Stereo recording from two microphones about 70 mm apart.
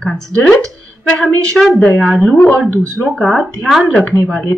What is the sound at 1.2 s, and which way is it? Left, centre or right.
Speech, centre.